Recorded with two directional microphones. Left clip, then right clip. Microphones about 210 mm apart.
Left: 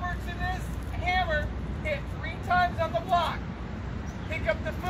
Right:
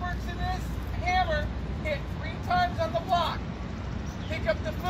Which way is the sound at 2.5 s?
Centre (ahead or behind).